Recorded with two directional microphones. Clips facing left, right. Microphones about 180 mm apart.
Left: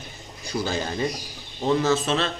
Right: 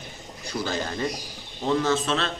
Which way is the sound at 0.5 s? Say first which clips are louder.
Left 2 dB; 10° left (ahead or behind).